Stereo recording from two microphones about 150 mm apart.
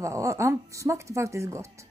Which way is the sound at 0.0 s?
20° right (ahead or behind).